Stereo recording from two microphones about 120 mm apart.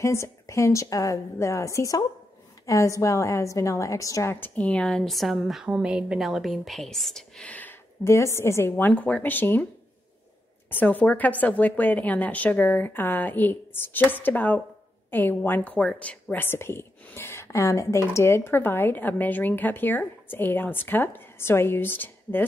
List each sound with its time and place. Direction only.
0.0 s a woman's voice: 25° left (ahead or behind)
8.0 s a woman's voice: 25° left (ahead or behind)
10.7 s a woman's voice: 15° left (ahead or behind)